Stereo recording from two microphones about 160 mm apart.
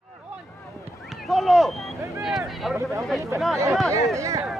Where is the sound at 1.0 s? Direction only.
Centre (ahead or behind).